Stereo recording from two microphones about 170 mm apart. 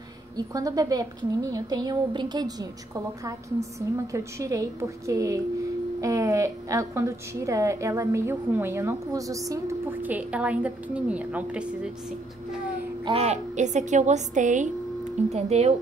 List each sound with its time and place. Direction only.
0.4 s a woman's voice: 20° right (ahead or behind)
13.0 s a woman's voice: 35° right (ahead or behind)